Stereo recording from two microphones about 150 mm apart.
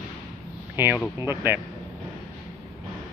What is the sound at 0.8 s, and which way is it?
Speech, 15° right (ahead or behind).